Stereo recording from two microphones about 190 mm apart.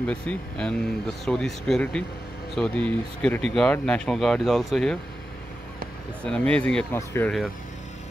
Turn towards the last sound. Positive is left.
turn(degrees=10)  # may be behind; listen again after turning